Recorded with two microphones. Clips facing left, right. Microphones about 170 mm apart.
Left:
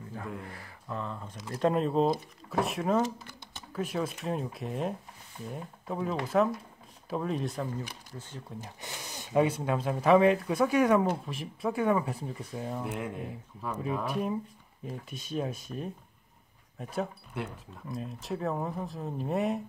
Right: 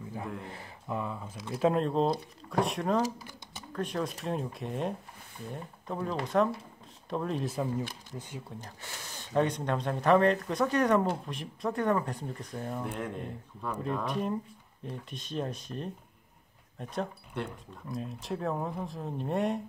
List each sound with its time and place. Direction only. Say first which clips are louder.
0.5 s speech: right 2 dB; 25° right (ahead or behind)
0.9 s speech: right 2 dB; 5° right (ahead or behind)
8.6 s speech: left 2 dB; 15° left (ahead or behind)